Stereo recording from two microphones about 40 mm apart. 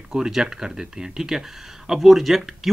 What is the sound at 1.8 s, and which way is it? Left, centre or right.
Speech, centre.